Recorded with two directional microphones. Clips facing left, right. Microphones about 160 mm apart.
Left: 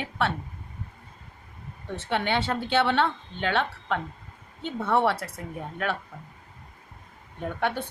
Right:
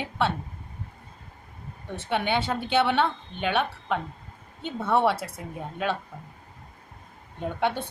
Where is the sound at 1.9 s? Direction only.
15° right (ahead or behind).